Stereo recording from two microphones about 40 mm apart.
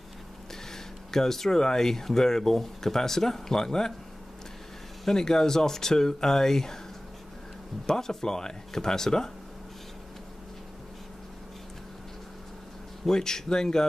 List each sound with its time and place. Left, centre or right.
1.1 s speech: centre
5.0 s speech: centre
7.8 s speech: centre
13.0 s speech: centre